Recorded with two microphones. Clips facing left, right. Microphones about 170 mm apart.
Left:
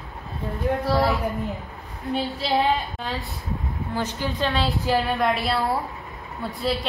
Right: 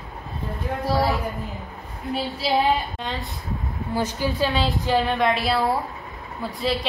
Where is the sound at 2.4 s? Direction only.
5° right (ahead or behind).